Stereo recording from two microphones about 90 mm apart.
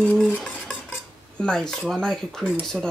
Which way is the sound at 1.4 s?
5° left (ahead or behind).